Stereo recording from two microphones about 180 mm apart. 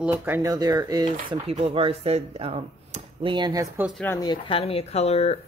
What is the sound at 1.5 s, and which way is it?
Speech, 35° right (ahead or behind).